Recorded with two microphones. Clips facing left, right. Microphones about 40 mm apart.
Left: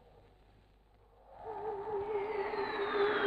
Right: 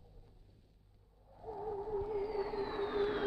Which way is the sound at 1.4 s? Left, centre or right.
Left.